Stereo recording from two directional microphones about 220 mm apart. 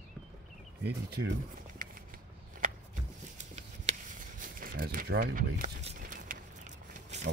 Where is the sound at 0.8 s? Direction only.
45° right (ahead or behind).